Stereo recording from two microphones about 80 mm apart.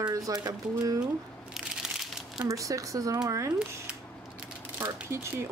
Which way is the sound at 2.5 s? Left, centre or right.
Right.